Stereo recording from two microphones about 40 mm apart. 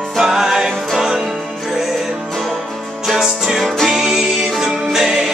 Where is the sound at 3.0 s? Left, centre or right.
Centre.